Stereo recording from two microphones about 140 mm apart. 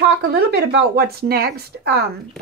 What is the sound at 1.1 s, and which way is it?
Speech, 90° right.